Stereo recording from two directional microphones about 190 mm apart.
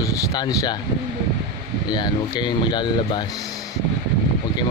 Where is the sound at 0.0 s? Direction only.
20° left (ahead or behind).